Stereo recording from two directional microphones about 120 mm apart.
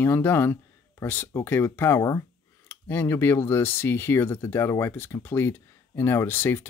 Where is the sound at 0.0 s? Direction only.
20° left (ahead or behind).